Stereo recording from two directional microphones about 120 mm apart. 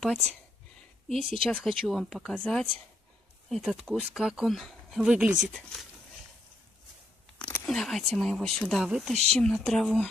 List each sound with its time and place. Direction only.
1.0 s speech: centre (ahead or behind)
7.3 s speech: 10° left (ahead or behind)